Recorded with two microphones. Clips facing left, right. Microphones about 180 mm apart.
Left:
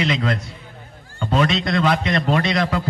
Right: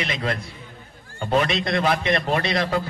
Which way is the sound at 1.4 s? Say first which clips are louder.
Left 4 dB; 25° right (ahead or behind).